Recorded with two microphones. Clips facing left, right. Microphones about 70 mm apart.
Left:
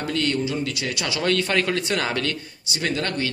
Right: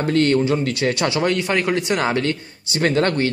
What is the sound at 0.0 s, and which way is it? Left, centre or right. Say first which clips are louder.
Speech: right 7 dB; right.